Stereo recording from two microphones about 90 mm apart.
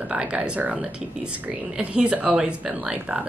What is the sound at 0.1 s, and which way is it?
A woman's voice, 10° right (ahead or behind).